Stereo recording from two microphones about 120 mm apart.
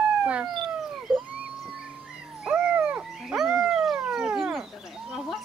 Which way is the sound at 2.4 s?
10° right (ahead or behind).